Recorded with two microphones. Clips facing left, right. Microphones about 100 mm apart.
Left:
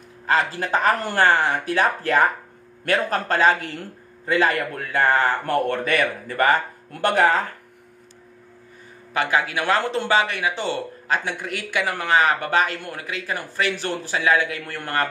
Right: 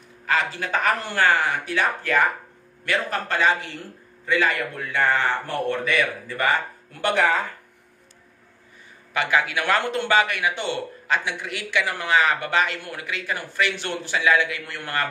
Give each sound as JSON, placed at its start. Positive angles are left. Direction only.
{"t": 0.3, "sound": "speech", "side_deg": 35}
{"t": 5.5, "sound": "speech", "side_deg": 50}
{"t": 9.1, "sound": "speech", "side_deg": 35}